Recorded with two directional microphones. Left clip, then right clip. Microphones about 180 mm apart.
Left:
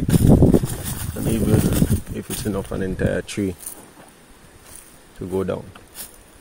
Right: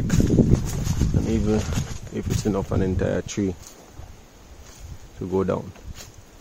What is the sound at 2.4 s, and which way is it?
Speech, 20° right (ahead or behind).